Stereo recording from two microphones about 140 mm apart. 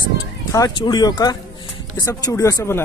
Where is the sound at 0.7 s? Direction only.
30° left (ahead or behind).